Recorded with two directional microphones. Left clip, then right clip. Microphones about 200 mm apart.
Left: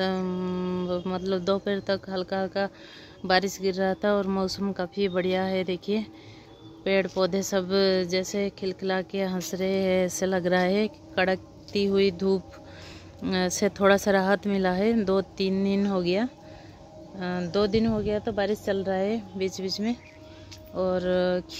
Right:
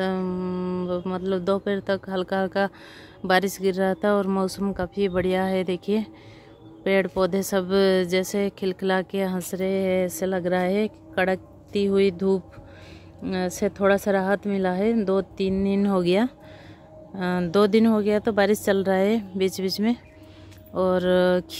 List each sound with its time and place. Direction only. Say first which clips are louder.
0.0 s speech: right 1 dB; 10° right (ahead or behind)